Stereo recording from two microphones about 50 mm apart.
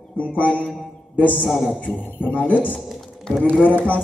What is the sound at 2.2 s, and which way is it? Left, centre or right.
Speech, left.